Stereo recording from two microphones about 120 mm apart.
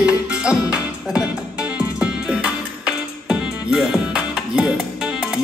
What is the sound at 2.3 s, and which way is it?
Music, 10° right (ahead or behind).